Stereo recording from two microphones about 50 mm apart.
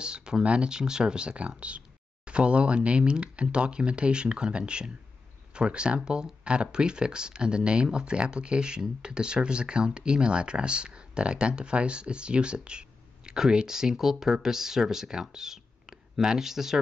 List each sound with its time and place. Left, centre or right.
0.0 s speech: centre